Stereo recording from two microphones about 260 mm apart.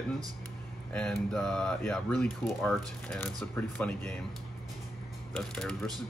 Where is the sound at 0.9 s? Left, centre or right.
Centre.